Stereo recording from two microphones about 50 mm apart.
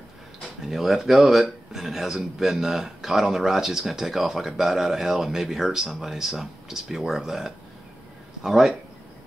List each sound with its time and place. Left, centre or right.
0.7 s speech: centre